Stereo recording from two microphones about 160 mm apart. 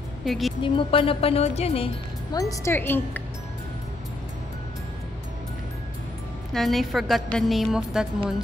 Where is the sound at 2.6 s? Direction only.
15° left (ahead or behind).